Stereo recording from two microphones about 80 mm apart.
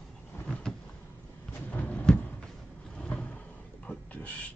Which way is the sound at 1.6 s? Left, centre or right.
Centre.